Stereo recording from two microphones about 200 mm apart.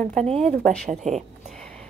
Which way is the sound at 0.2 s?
5° left (ahead or behind).